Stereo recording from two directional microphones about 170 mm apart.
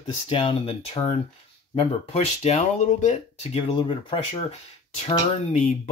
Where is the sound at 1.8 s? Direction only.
40° left (ahead or behind).